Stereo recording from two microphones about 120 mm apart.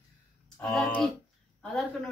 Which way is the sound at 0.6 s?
5° left (ahead or behind).